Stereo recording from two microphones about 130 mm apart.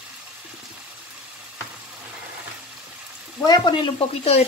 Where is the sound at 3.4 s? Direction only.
30° left (ahead or behind); by 4.5 s 50° left (ahead or behind).